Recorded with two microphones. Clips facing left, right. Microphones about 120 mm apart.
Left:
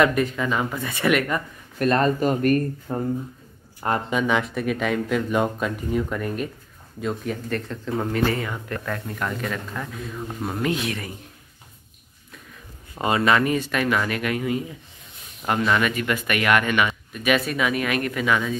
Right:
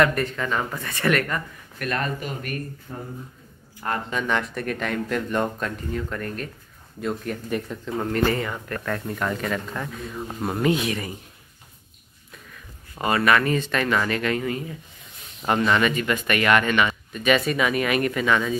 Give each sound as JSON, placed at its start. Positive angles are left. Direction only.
{"t": 0.0, "sound": "speech", "side_deg": 5}
{"t": 1.8, "sound": "speech", "side_deg": 35}
{"t": 4.1, "sound": "speech", "side_deg": 5}
{"t": 7.4, "sound": "speech", "side_deg": -10}
{"t": 7.8, "sound": "speech", "side_deg": 0}
{"t": 12.9, "sound": "speech", "side_deg": 20}